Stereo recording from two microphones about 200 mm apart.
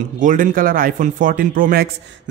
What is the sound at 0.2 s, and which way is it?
Speech, 40° right (ahead or behind).